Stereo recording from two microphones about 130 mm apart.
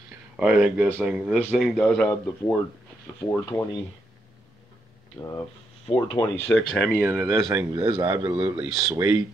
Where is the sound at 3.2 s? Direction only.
25° left (ahead or behind).